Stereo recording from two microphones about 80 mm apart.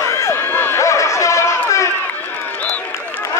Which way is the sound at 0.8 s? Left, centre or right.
Left.